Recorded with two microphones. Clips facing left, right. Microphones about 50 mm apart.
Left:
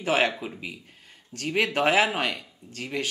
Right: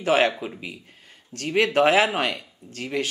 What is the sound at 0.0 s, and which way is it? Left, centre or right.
Speech, centre.